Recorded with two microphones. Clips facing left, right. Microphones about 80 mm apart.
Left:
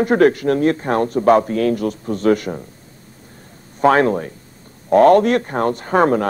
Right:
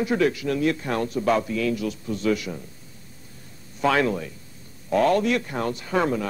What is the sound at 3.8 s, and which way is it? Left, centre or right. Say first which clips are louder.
A man's voice: left 8 dB; left.